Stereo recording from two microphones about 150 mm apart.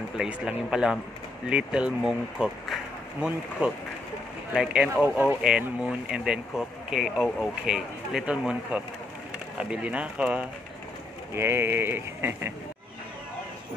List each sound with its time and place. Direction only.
0.2 s speech: 5° right (ahead or behind)